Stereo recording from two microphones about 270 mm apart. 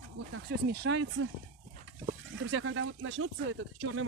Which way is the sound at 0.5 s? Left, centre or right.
Right.